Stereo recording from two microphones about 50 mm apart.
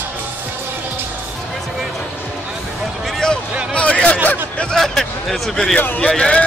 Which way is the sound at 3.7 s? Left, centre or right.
Left.